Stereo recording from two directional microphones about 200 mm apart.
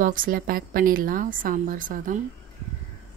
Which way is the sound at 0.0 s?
45° right (ahead or behind).